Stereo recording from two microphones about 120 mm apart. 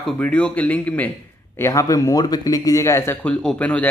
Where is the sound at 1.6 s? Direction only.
25° left (ahead or behind).